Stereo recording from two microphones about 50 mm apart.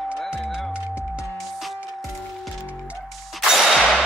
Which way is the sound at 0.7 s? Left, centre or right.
Right.